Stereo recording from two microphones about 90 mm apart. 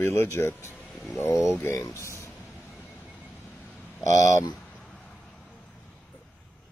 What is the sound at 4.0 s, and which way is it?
Speech, 35° left (ahead or behind).